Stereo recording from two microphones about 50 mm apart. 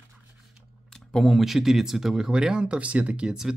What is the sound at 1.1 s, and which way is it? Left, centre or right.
Speech, centre.